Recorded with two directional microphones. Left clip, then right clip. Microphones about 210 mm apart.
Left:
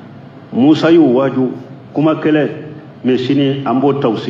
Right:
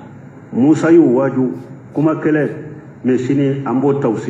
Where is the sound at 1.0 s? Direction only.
40° left (ahead or behind).